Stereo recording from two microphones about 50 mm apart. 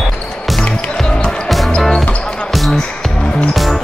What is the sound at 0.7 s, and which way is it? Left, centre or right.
Music, left.